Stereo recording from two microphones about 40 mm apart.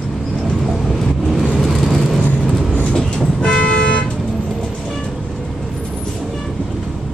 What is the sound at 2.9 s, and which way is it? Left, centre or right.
Toot, centre.